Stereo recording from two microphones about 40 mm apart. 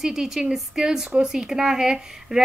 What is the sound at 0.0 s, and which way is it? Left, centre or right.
A woman's voice, centre.